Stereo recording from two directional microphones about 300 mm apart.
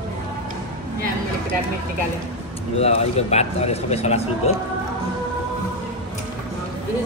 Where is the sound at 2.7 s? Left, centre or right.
Left.